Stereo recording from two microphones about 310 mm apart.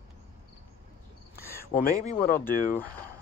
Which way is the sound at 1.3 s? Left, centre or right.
Left.